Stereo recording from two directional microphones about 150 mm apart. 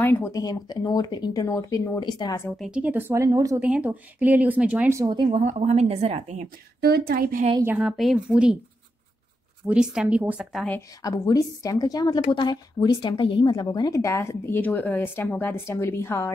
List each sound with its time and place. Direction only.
0.0 s a woman's voice: 15° left (ahead or behind)
2.6 s speech: 10° right (ahead or behind); by 3.5 s 25° right (ahead or behind)
3.5 s speech: 10° right (ahead or behind)
5.0 s speech: 30° right (ahead or behind)
5.3 s a woman's voice: 50° right (ahead or behind)
6.8 s a woman's voice: 90° right
7.6 s speech: 5° right (ahead or behind)
9.7 s speech: 5° right (ahead or behind)
11.0 s a woman's voice: 25° left (ahead or behind)